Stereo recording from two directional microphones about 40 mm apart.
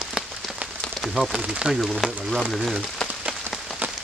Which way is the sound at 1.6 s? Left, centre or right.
Right.